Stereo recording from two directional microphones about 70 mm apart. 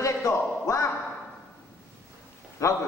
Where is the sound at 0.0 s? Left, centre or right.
Left.